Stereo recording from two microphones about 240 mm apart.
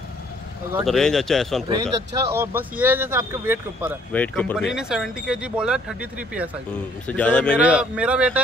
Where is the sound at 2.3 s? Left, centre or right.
Centre.